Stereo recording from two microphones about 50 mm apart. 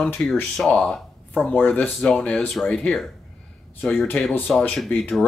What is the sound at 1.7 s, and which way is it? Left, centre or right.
Speech, left.